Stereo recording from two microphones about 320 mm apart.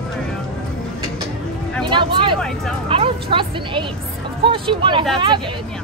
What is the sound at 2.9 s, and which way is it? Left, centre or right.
Music, centre.